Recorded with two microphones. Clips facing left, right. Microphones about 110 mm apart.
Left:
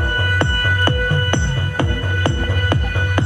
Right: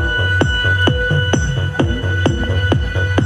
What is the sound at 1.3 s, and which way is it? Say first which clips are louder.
Music: right 3 dB; 20° right (ahead or behind).